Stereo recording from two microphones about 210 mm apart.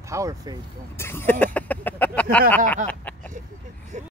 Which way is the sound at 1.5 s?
10° left (ahead or behind).